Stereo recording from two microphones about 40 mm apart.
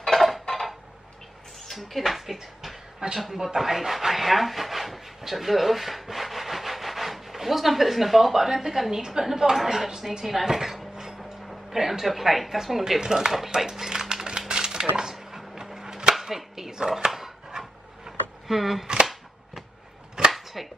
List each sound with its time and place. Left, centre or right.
0.0 s dishes: centre
1.7 s speech: centre
13.0 s speech: centre
13.7 s typing: centre
14.5 s a sound: centre
16.2 s chopping: centre
18.6 s speech: centre
20.2 s chopping: centre